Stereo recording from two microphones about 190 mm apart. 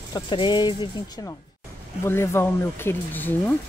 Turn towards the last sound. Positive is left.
turn(degrees=10)  # may be behind; listen again after turning